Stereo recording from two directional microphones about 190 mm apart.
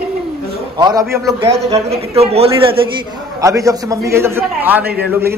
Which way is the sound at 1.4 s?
30° right (ahead or behind).